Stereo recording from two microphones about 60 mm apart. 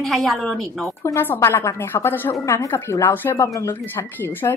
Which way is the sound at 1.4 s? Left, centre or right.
Left.